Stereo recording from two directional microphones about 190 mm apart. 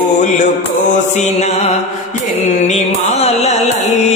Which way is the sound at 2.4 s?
35° left (ahead or behind).